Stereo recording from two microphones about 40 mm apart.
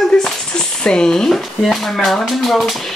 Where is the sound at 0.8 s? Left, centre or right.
Centre.